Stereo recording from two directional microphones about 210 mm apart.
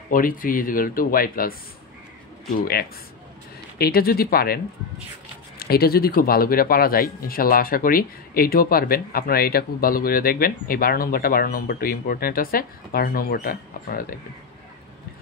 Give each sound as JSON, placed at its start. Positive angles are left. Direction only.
{"t": 0.1, "sound": "speech", "side_deg": 40}
{"t": 2.5, "sound": "speech", "side_deg": 45}
{"t": 5.6, "sound": "speech", "side_deg": 45}